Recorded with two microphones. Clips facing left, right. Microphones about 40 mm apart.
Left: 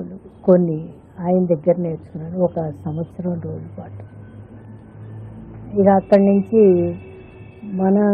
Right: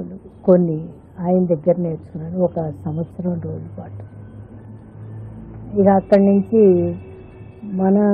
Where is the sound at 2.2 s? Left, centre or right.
Centre.